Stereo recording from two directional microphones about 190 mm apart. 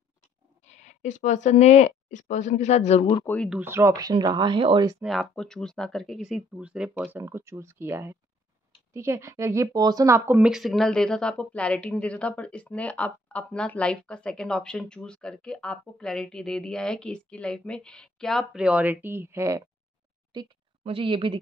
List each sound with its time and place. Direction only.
0.7 s speech: 35° left (ahead or behind)
3.4 s speech: 10° right (ahead or behind); by 4.9 s 25° right (ahead or behind)
5.0 s speech: centre (ahead or behind); by 19.6 s 15° right (ahead or behind)
20.3 s a woman's voice: 30° right (ahead or behind)